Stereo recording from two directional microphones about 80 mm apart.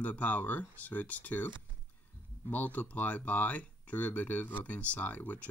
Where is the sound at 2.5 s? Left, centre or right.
Left.